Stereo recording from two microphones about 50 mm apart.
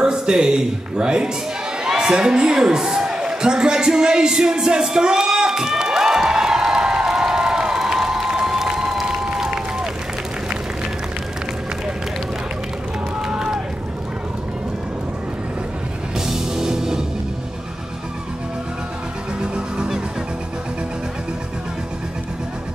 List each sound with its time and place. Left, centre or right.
0.0 s speech: centre
1.9 s a sound: centre
13.3 s run: centre
16.2 s music: centre
19.4 s music: centre